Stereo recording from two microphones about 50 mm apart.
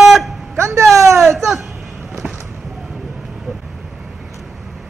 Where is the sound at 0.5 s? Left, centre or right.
Right.